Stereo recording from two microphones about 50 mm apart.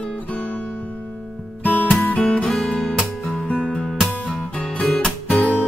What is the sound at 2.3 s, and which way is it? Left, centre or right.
Music, centre.